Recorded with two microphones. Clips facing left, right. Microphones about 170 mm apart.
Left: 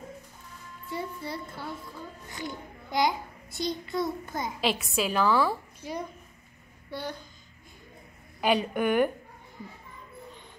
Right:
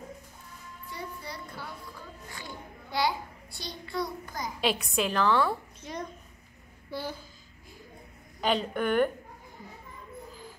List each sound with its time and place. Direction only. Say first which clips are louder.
0.8 s a child's voice: left 6 dB; 25° left (ahead or behind)
4.6 s a woman's voice: right 1 dB; centre (ahead or behind)
6.9 s a woman's voice: even; 5° right (ahead or behind)
8.4 s a woman's voice: left 2 dB; 10° left (ahead or behind)